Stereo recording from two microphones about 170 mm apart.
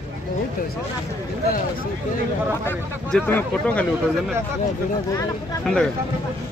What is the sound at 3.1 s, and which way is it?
Speech, 10° left (ahead or behind).